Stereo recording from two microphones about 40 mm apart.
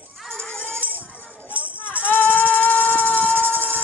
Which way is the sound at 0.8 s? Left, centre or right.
Right.